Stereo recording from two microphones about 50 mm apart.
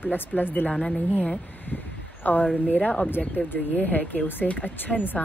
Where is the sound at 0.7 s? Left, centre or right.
Centre.